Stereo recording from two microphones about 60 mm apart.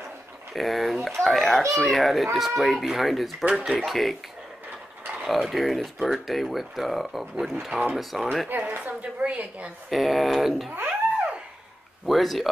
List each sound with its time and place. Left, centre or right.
0.5 s speech: centre
3.4 s speech: centre
3.7 s speech: centre
5.2 s speech: centre
8.5 s a woman's voice: right
9.8 s speech: centre
10.7 s a sound: right
12.1 s speech: centre